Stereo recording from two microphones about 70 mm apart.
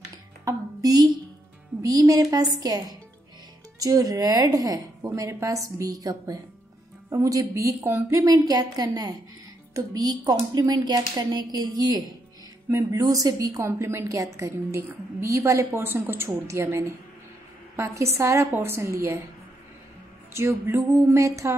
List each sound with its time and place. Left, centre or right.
0.5 s a sound: right
1.8 s a woman's voice: right
5.0 s music: right
5.4 s a woman's voice: right
12.6 s a woman's voice: right
13.7 s music: right
14.8 s a woman's voice: right
15.2 s music: right
15.8 s a woman's voice: right
17.7 s music: right
18.5 s a woman's voice: right
20.3 s music: right